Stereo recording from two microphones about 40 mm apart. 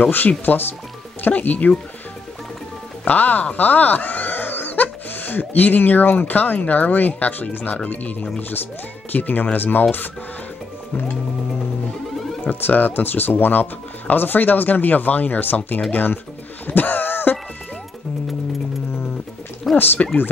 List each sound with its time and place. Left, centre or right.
0.5 s speech: left
1.2 s speech: left
3.1 s speech: left
12.4 s speech: left
16.6 s a sound: left
19.7 s liquid: centre